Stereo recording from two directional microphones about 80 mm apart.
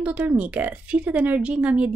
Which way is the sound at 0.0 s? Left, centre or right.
Centre.